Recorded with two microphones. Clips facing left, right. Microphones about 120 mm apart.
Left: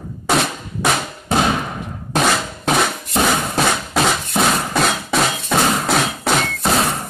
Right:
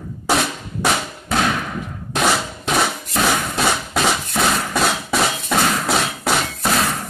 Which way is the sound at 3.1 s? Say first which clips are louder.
Left 2 dB; 25° left (ahead or behind).